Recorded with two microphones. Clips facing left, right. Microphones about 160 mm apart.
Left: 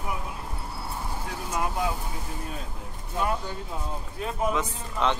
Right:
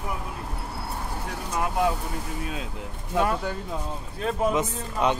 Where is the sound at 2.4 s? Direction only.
90° right.